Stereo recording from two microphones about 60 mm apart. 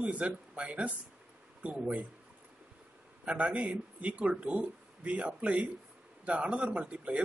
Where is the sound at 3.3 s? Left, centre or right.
Right.